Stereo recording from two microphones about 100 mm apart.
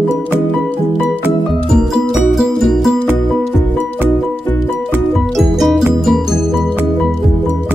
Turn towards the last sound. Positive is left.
turn(degrees=0)  # may be behind; listen again after turning